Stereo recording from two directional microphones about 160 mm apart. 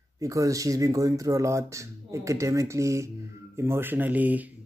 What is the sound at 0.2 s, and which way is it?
Speech, 20° right (ahead or behind).